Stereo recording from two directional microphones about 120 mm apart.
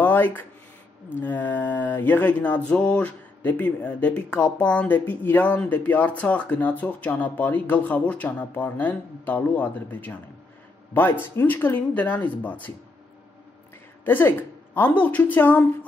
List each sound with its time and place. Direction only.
0.0 s a sound: 15° left (ahead or behind)
1.1 s speech: 15° left (ahead or behind)
14.0 s speech: 15° left (ahead or behind)